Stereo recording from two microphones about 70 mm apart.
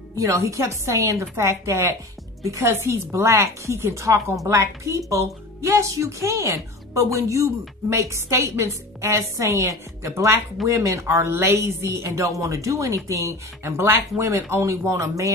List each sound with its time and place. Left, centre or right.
0.2 s speech: right